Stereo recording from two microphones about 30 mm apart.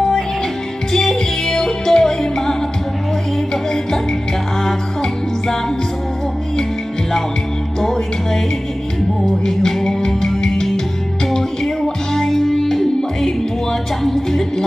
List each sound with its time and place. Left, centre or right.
0.9 s music: centre
4.6 s music: centre
7.8 s music: centre
9.9 s music: left
11.3 s music: centre